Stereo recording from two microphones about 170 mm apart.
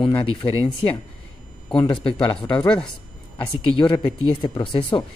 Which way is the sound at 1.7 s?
30° left (ahead or behind).